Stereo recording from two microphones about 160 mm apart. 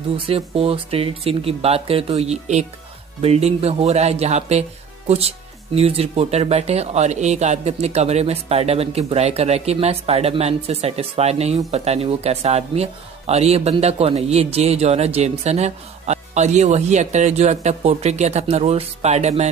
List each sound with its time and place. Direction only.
0.3 s speech: 35° right (ahead or behind)